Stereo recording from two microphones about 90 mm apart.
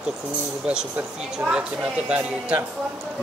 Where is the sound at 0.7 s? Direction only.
5° right (ahead or behind).